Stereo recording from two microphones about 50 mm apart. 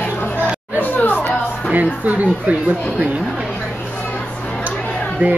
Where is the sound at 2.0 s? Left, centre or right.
Right.